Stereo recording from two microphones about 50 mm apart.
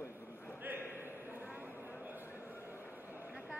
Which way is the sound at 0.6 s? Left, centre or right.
Right.